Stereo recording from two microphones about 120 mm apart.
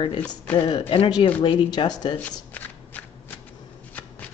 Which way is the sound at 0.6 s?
45° left (ahead or behind).